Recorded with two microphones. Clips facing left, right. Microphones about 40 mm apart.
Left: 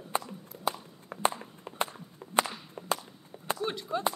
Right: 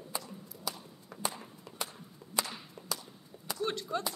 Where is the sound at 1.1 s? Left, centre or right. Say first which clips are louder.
Left 9 dB; left.